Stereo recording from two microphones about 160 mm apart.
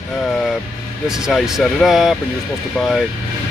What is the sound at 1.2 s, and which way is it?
Speech, centre (ahead or behind).